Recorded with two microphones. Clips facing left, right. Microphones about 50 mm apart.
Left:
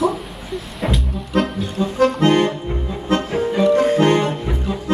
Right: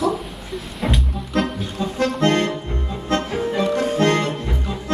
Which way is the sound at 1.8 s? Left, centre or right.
Centre.